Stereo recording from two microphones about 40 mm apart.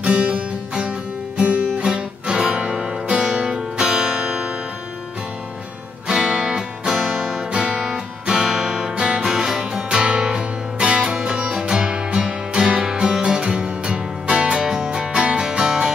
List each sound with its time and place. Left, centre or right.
0.0 s music: right
1.4 s guitar: right
3.2 s music: right
6.0 s music: centre
9.8 s music: right